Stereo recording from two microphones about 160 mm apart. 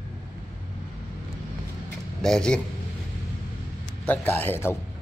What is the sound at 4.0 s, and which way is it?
Speech, 10° left (ahead or behind).